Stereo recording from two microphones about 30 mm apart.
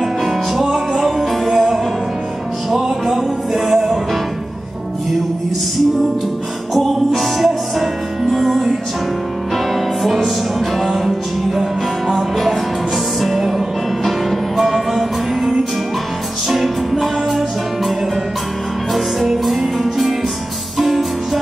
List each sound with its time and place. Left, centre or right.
0.7 s music: centre
6.7 s music: centre
10.0 s music: centre
13.2 s music: centre
14.6 s music: centre
18.9 s music: centre